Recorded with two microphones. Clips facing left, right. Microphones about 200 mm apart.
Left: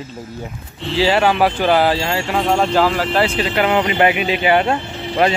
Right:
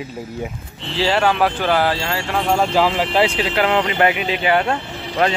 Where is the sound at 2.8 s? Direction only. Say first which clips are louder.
Even; 15° right (ahead or behind).